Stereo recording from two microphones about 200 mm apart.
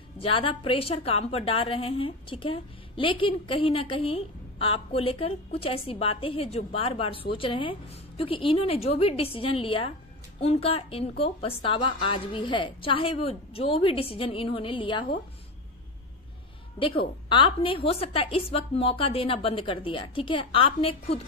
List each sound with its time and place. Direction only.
0.2 s a woman's voice: 25° left (ahead or behind)
16.7 s a woman's voice: 25° left (ahead or behind)